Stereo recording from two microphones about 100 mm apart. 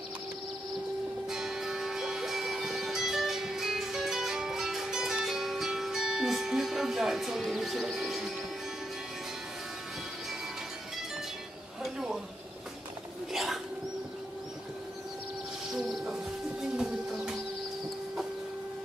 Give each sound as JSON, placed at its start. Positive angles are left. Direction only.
{"t": 1.3, "sound": "music", "side_deg": -5}
{"t": 11.8, "sound": "a sound", "side_deg": -5}
{"t": 13.3, "sound": "bird", "side_deg": 0}
{"t": 15.7, "sound": "music", "side_deg": -5}